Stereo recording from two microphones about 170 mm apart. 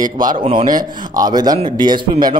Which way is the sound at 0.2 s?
30° right (ahead or behind).